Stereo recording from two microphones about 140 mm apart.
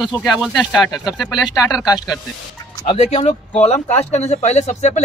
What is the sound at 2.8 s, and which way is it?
Speech, 50° left (ahead or behind).